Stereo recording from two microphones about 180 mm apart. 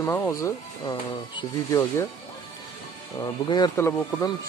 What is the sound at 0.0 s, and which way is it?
Speech, 15° left (ahead or behind).